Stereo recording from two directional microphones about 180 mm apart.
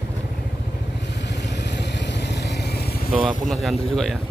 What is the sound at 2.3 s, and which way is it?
Vehicle, 70° left (ahead or behind).